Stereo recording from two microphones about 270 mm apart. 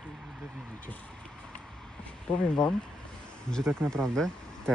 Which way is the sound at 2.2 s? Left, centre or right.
Centre.